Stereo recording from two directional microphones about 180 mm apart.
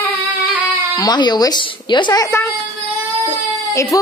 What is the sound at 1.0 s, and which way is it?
A woman's voice, 25° left (ahead or behind).